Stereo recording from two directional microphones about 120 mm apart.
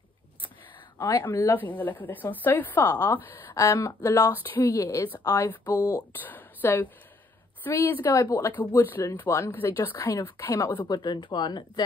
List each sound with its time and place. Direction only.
0.9 s a woman's voice: 25° left (ahead or behind)
6.1 s speech: 15° left (ahead or behind)
10.9 s speech: 40° left (ahead or behind)